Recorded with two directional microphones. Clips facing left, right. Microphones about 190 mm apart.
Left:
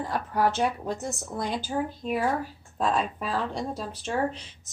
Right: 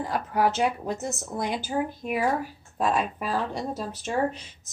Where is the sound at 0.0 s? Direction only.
10° right (ahead or behind).